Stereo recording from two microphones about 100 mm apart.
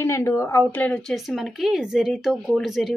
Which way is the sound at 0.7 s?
15° left (ahead or behind).